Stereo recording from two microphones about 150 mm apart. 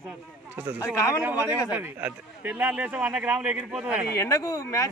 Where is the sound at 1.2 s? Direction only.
15° right (ahead or behind).